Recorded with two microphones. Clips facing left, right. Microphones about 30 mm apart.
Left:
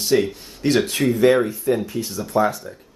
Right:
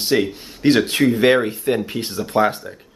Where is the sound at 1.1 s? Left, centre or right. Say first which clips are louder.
Right 1 dB; right.